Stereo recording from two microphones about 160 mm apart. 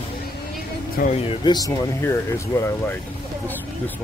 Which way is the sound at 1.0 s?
65° left (ahead or behind).